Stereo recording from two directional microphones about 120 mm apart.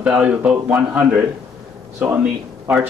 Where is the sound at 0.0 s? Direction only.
10° right (ahead or behind).